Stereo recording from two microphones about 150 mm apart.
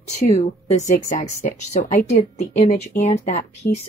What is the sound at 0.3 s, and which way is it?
Speech, 50° left (ahead or behind).